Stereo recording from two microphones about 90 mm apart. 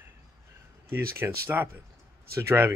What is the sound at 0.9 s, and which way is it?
Speech, 25° right (ahead or behind).